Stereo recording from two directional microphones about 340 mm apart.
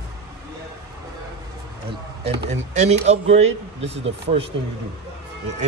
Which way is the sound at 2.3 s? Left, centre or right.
Right.